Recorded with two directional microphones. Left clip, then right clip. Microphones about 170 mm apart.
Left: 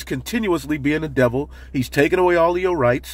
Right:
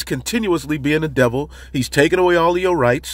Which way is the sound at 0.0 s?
25° right (ahead or behind).